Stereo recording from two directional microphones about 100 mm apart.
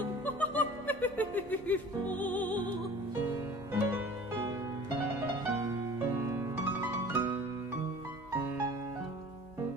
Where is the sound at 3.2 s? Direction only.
20° right (ahead or behind).